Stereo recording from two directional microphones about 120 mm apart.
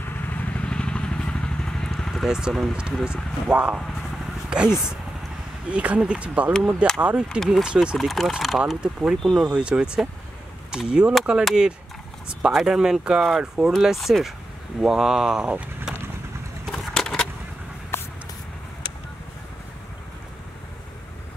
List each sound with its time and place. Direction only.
0.0 s vehicle: 15° left (ahead or behind); by 3.8 s 10° right (ahead or behind)
5.7 s speech: 10° right (ahead or behind)
16.6 s vehicle: 5° left (ahead or behind)
17.9 s spray: 20° left (ahead or behind)